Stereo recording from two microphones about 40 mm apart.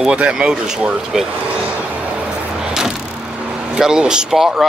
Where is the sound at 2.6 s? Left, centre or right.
Centre.